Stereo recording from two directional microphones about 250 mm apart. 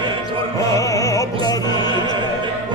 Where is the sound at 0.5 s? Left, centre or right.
Centre.